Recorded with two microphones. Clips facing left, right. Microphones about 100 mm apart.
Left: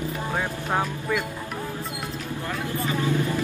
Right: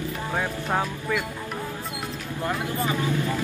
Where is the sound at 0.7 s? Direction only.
5° left (ahead or behind).